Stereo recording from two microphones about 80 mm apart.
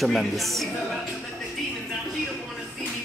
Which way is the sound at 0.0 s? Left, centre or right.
Centre.